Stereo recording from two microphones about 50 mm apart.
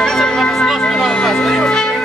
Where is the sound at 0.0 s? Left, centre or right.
Centre.